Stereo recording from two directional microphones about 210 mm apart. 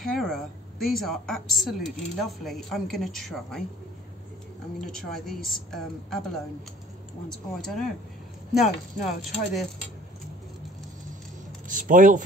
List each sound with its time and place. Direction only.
0.0 s a woman's voice: centre (ahead or behind)
4.7 s a woman's voice: centre (ahead or behind)
7.2 s a woman's voice: centre (ahead or behind)
11.6 s a sound: 40° right (ahead or behind)